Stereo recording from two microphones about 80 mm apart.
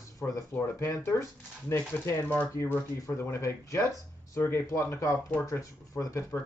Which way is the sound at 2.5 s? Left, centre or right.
Left.